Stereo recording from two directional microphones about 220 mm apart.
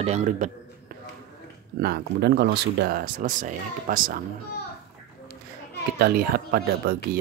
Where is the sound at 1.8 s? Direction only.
50° right (ahead or behind).